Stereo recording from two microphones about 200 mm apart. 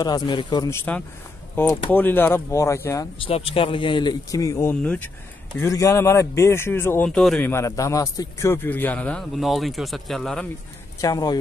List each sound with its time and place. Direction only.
0.0 s speech: 20° left (ahead or behind)
1.9 s speech: 10° left (ahead or behind)
3.2 s speech: 30° left (ahead or behind); by 10.5 s 5° left (ahead or behind)
11.0 s speech: 20° left (ahead or behind)